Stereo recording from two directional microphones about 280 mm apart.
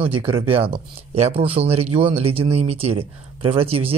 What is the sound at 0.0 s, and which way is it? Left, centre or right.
A man's voice, centre.